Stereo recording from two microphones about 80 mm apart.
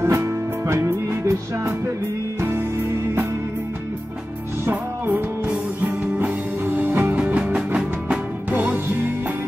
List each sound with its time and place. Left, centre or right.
0.0 s music: right
4.6 s music: right